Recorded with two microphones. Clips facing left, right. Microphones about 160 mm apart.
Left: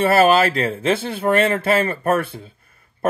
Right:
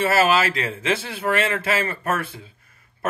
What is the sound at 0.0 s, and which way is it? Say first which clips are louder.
Speech: left 5 dB; 55° left (ahead or behind).